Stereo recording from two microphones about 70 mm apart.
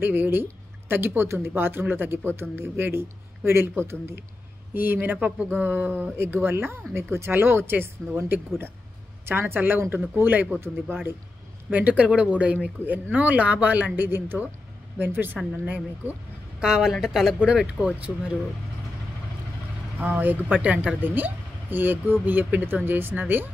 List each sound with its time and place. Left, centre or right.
0.0 s speech: right
11.7 s speech: right
16.5 s a woman's voice: centre
17.6 s speech: centre
20.0 s speech: right